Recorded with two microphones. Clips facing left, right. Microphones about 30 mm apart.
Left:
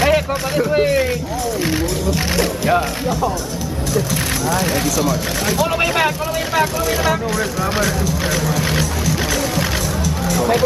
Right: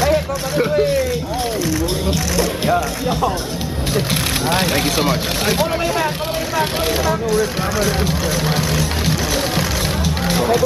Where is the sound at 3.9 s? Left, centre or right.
Right.